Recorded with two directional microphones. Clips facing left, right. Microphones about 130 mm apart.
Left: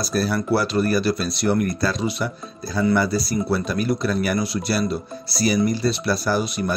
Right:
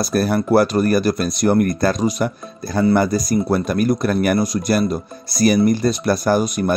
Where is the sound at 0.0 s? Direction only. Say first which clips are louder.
Right 4 dB; 55° right (ahead or behind).